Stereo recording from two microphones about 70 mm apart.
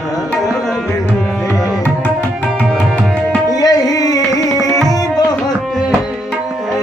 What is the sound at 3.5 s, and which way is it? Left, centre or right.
Tabla, left.